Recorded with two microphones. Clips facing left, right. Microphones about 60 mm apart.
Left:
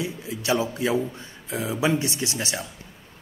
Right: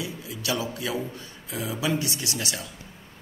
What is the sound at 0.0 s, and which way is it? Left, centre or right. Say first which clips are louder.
Speech: left 3 dB; left.